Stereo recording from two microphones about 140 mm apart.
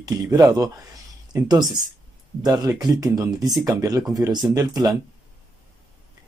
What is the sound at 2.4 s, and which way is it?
Speech, 25° right (ahead or behind).